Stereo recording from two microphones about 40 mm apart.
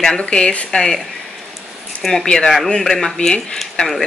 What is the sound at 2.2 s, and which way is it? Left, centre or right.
Speech, centre.